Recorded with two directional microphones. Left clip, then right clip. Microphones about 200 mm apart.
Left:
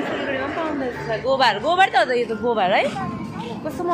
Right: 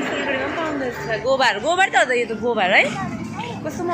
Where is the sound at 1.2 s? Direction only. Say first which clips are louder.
Even; centre (ahead or behind).